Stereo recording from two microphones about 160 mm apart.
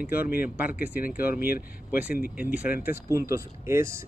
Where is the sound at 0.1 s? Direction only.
75° left (ahead or behind).